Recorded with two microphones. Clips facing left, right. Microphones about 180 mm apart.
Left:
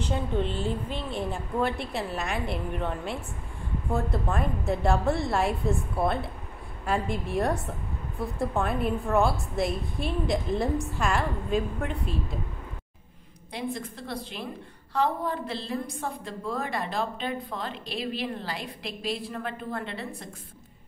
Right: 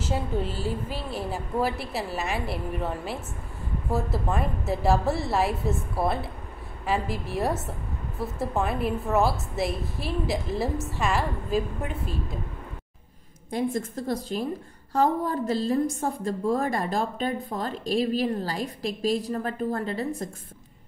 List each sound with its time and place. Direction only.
0.0 s a woman's voice: 5° right (ahead or behind)
13.5 s a woman's voice: 45° right (ahead or behind)